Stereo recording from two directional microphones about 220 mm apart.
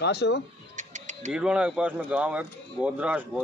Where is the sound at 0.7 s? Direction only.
35° right (ahead or behind).